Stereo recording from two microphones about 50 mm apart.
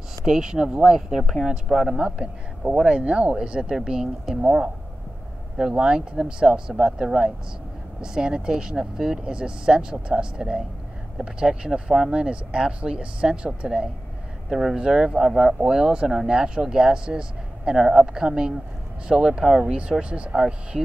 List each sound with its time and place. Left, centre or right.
0.2 s speech: centre
2.0 s speech: centre